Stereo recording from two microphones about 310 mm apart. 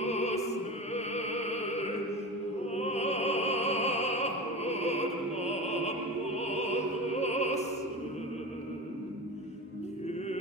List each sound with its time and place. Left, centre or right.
0.0 s opera: left